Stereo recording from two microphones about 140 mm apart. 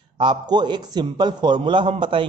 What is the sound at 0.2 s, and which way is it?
Speech, 35° right (ahead or behind).